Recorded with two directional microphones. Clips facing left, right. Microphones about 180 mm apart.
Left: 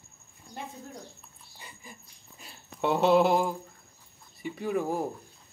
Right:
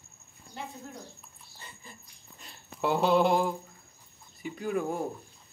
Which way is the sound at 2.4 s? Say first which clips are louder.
Left 1 dB; centre (ahead or behind).